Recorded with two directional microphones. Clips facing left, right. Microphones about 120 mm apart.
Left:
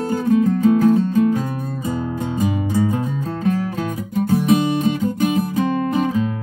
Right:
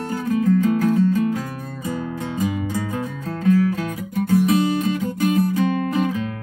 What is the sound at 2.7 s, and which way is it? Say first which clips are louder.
Music: left 6 dB; 25° left (ahead or behind).